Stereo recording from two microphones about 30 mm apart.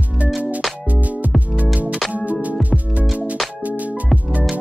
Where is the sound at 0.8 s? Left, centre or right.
Right.